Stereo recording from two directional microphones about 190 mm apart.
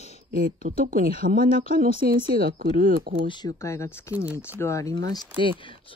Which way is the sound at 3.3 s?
15° left (ahead or behind).